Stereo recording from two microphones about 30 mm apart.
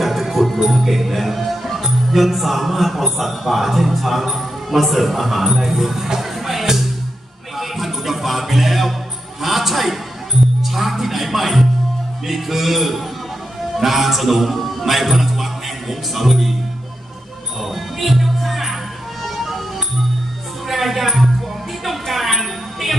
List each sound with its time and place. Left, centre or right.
0.0 s music: centre
0.7 s speech: centre
6.0 s music: centre
7.5 s a sound: centre
9.4 s music: centre
10.6 s a man's voice: centre
17.6 s music: centre
20.6 s music: centre
22.1 s a sound: centre